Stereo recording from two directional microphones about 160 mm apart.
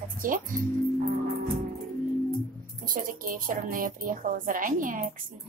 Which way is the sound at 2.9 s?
60° right (ahead or behind).